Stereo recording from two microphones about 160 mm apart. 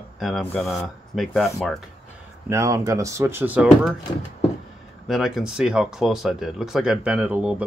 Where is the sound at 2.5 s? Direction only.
20° right (ahead or behind).